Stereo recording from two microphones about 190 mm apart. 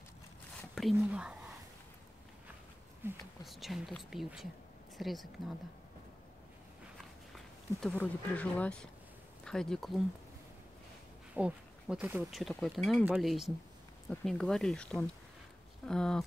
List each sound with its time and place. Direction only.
0.9 s speech: 5° right (ahead or behind)
3.0 s speech: 10° right (ahead or behind)
3.4 s speech: centre (ahead or behind)
7.3 s speech: 5° left (ahead or behind)
11.3 s speech: 5° right (ahead or behind)